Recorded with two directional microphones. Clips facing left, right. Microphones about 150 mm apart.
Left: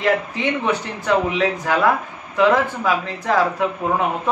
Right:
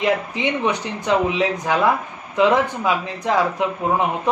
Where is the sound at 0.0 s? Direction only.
15° right (ahead or behind).